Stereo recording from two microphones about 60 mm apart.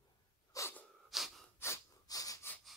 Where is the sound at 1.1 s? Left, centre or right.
Centre.